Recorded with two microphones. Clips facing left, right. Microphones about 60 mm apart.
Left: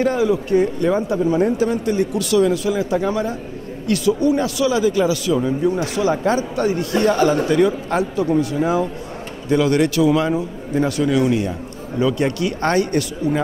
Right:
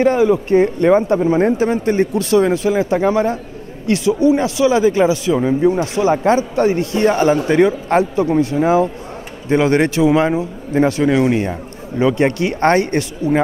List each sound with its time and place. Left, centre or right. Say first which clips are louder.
0.0 s a man's voice: right 4 dB; right